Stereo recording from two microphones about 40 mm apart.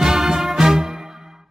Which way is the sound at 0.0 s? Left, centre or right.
Centre.